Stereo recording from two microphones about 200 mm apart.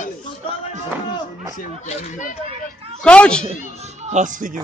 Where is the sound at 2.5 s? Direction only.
30° right (ahead or behind).